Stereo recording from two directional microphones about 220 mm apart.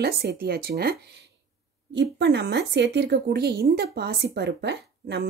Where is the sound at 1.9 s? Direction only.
50° right (ahead or behind).